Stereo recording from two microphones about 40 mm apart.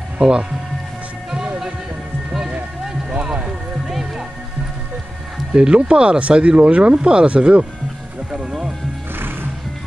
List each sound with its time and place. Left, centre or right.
0.2 s speech: right
2.8 s music: centre
5.5 s speech: right
8.3 s music: centre